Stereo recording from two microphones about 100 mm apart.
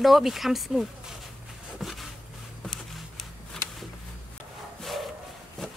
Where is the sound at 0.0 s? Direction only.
Centre (ahead or behind).